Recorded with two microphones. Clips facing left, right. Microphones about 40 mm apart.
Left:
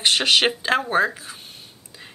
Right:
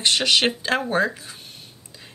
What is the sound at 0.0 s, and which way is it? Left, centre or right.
A woman's voice, centre.